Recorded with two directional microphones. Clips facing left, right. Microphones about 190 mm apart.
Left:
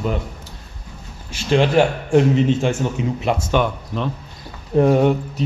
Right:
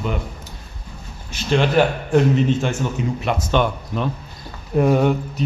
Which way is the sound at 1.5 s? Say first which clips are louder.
Left 1 dB; 30° left (ahead or behind).